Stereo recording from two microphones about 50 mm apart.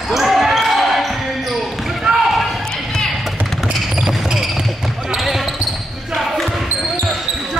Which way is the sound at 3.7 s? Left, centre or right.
Centre.